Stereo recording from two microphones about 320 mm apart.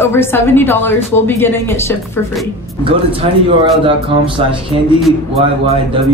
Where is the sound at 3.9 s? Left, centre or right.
Centre.